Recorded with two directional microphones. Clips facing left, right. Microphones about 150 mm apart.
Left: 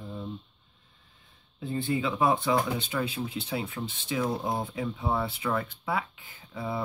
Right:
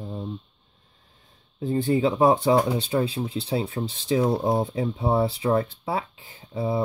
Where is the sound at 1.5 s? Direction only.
40° right (ahead or behind).